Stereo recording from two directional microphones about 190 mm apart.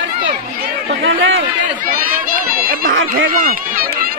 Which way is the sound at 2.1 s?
50° right (ahead or behind).